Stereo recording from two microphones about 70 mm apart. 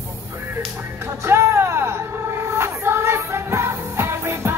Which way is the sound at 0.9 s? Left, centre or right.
Right.